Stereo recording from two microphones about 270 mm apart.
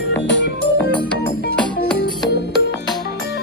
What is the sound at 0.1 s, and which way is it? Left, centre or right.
Music, left.